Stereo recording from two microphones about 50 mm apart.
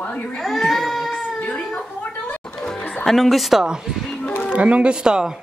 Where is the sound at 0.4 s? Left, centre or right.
Centre.